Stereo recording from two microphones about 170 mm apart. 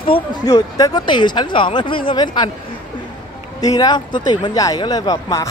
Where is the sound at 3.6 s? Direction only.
20° left (ahead or behind).